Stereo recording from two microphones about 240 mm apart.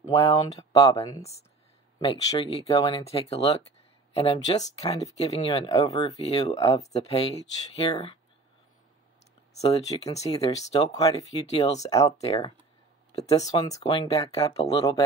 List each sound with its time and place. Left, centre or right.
0.0 s speech: centre
2.6 s speech: left
9.6 s speech: left